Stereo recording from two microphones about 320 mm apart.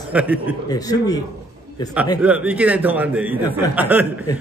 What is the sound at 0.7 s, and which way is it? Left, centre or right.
Speech, centre.